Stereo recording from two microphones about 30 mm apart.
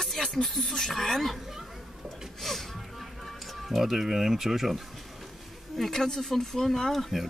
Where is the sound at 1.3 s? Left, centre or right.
Centre.